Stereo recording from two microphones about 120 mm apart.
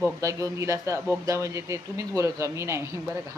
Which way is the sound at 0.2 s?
25° right (ahead or behind).